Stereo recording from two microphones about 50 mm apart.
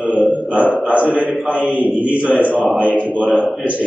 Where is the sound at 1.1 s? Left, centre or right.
Right.